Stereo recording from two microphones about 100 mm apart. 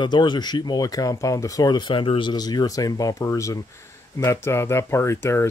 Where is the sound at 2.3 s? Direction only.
45° left (ahead or behind).